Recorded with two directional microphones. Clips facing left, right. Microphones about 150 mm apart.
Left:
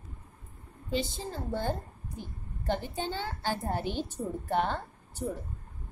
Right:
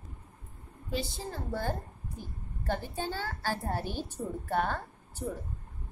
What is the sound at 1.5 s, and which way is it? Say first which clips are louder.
Speech: left 2 dB; 20° left (ahead or behind).